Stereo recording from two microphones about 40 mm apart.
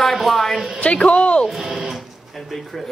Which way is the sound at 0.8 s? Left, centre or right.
Left.